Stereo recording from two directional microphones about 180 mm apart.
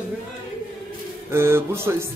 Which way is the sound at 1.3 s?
15° right (ahead or behind).